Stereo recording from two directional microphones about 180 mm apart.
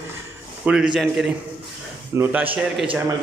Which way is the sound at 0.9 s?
Centre (ahead or behind).